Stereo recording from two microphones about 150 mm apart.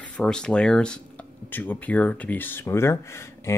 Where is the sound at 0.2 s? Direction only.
5° left (ahead or behind).